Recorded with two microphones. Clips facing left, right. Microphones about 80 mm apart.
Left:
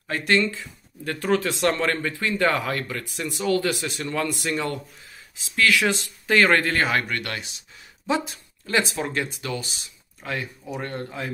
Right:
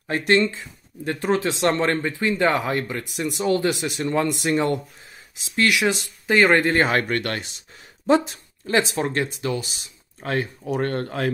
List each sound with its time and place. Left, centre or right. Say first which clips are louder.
0.1 s speech: right 3 dB; right
8.6 s speech: right 3 dB; right
10.2 s speech: right 5 dB; right
10.7 s speech: right 7 dB; right